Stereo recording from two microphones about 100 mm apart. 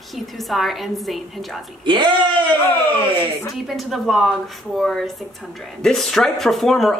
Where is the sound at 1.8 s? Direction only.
50° right (ahead or behind).